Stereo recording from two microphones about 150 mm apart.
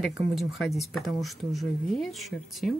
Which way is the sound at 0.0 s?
Centre (ahead or behind).